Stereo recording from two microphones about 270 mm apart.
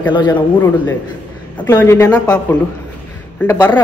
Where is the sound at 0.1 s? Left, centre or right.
Centre.